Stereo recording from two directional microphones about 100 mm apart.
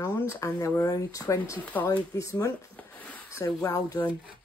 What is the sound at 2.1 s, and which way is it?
Speech, 35° left (ahead or behind).